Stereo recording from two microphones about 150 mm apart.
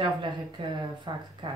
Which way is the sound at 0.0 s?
30° right (ahead or behind).